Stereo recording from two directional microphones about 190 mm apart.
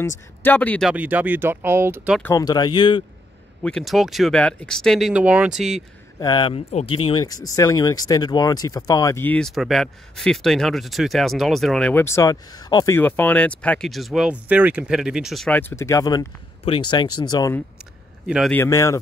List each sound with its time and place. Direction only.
0.4 s speech: 10° left (ahead or behind)
0.9 s speech: 10° right (ahead or behind)
2.3 s speech: 20° left (ahead or behind)
3.6 s speech: centre (ahead or behind)
6.1 s speech: 20° left (ahead or behind)
18.2 s a man's voice: 5° right (ahead or behind)
18.5 s speech: 15° left (ahead or behind)